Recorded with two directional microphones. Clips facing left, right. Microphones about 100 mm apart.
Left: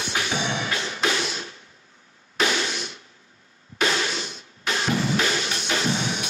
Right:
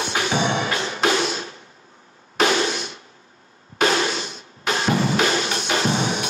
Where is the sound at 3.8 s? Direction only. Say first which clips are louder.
Right 5 dB; 35° right (ahead or behind).